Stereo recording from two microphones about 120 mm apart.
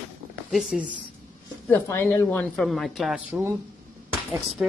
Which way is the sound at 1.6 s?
20° left (ahead or behind).